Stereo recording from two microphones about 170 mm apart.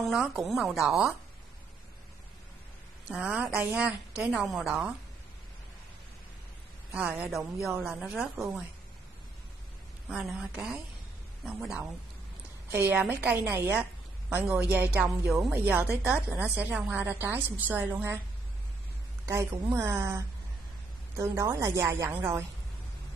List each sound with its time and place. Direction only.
0.0 s a woman's voice: centre (ahead or behind)
3.1 s a woman's voice: 5° right (ahead or behind)
6.9 s a woman's voice: 10° right (ahead or behind)
10.0 s a woman's voice: 5° right (ahead or behind)
19.2 s a woman's voice: 15° right (ahead or behind)